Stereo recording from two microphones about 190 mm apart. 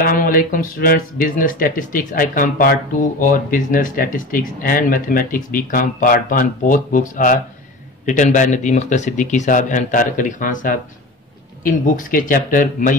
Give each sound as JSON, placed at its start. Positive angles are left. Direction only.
{"t": 0.0, "sound": "speech", "side_deg": 50}